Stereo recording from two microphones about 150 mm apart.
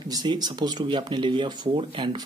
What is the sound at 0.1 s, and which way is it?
Speech, 30° right (ahead or behind).